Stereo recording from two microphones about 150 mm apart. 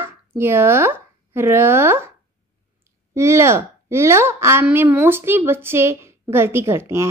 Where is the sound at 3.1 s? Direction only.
20° right (ahead or behind).